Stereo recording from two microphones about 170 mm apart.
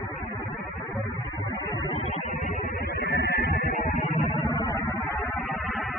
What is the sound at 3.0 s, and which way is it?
Music, 75° left (ahead or behind).